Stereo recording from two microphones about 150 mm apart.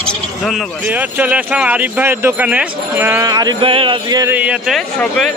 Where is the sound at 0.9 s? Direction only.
10° right (ahead or behind).